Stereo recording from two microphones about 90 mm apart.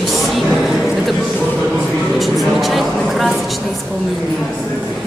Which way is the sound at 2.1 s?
Centre (ahead or behind).